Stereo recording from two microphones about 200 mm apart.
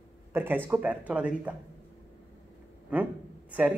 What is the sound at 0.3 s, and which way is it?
Speech, 10° right (ahead or behind).